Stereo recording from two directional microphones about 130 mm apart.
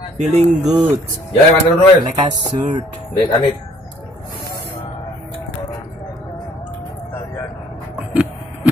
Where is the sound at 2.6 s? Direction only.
35° right (ahead or behind).